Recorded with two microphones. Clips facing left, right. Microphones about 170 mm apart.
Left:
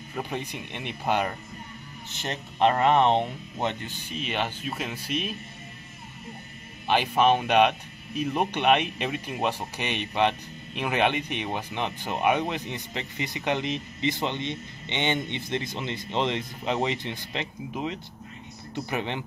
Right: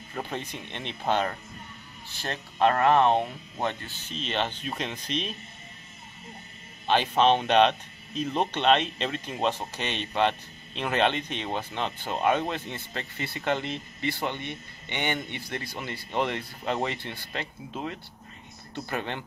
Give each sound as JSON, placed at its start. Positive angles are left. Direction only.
{"t": 0.1, "sound": "speech", "side_deg": 15}
{"t": 6.9, "sound": "speech", "side_deg": 10}